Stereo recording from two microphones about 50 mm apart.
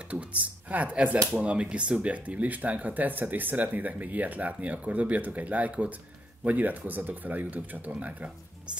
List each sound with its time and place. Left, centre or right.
0.1 s speech: right